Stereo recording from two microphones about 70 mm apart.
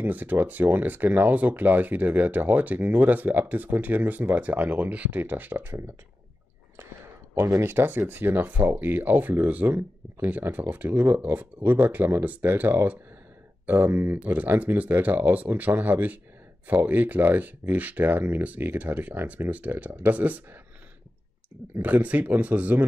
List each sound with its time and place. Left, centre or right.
0.0 s speech: right
7.3 s speech: right
21.8 s speech: right